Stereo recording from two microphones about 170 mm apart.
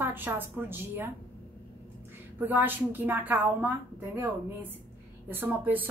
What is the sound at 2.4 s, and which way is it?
A woman's voice, 10° right (ahead or behind).